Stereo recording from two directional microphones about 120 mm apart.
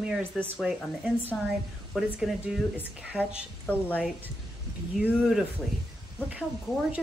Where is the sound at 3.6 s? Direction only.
15° left (ahead or behind).